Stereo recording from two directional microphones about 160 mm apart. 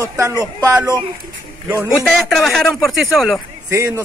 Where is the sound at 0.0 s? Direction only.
20° right (ahead or behind).